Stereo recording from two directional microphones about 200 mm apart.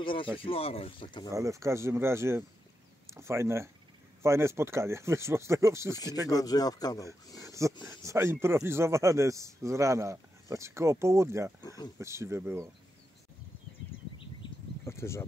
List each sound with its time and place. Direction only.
0.0 s speech: 25° left (ahead or behind)
1.3 s a man's voice: 15° right (ahead or behind)
6.2 s speech: 20° left (ahead or behind)
7.4 s a man's voice: 15° right (ahead or behind)
14.9 s speech: 15° left (ahead or behind)